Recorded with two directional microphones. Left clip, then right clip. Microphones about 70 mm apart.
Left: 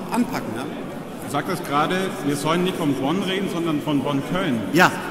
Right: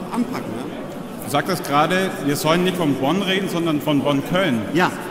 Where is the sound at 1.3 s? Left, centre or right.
Right.